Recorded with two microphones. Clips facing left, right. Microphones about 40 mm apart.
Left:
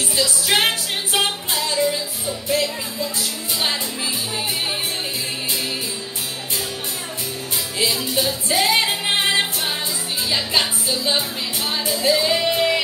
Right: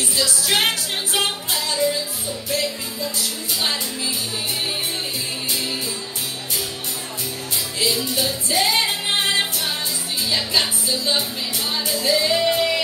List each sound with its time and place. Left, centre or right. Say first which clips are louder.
0.1 s music: left 2 dB; centre
3.0 s music: even; centre
7.9 s music: left 1 dB; centre